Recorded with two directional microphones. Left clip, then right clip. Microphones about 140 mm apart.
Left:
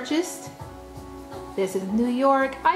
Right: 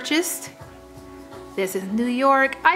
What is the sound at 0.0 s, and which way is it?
Speech, 35° right (ahead or behind).